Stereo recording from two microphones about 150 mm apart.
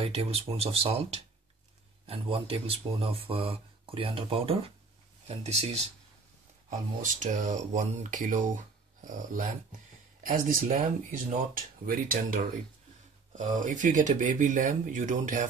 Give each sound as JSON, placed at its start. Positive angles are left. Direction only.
{"t": 0.0, "sound": "speech", "side_deg": -40}
{"t": 7.0, "sound": "speech", "side_deg": -60}
{"t": 13.3, "sound": "speech", "side_deg": -55}